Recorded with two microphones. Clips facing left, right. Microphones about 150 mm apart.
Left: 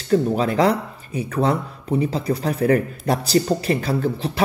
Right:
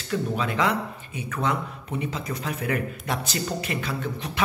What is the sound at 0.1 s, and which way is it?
Speech, 35° left (ahead or behind).